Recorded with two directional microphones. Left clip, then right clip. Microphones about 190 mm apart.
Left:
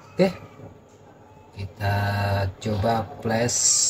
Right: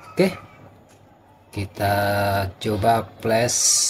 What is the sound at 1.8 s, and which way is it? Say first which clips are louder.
Speech: right 6 dB; 60° right (ahead or behind).